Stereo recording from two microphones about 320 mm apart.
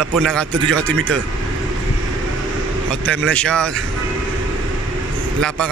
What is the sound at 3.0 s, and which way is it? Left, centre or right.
Speech, centre.